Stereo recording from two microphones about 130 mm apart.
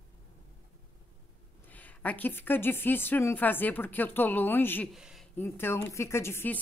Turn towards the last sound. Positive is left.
turn(degrees=20)  # may be behind; listen again after turning